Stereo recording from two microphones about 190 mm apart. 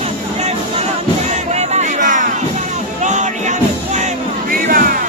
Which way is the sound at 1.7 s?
40° right (ahead or behind).